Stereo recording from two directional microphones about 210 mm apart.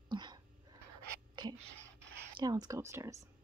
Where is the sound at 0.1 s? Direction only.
20° right (ahead or behind).